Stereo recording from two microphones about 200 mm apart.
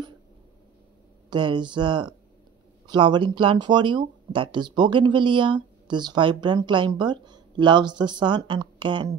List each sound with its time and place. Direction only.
1.3 s speech: 25° right (ahead or behind)